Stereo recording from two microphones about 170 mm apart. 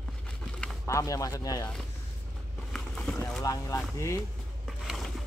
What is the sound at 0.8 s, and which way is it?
Speech, 20° left (ahead or behind).